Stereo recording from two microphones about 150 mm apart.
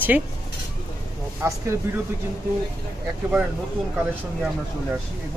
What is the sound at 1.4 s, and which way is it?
Speech, 20° right (ahead or behind).